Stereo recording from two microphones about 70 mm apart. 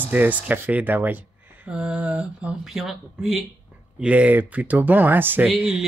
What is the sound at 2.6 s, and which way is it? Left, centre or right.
Speech, centre.